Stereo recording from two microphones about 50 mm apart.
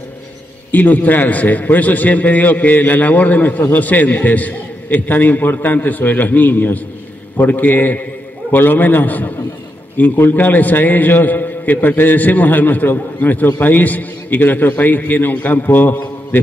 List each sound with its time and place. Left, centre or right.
0.7 s a man's voice: left